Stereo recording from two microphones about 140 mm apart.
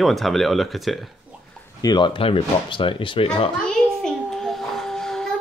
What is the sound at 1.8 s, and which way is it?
Speech, 30° left (ahead or behind).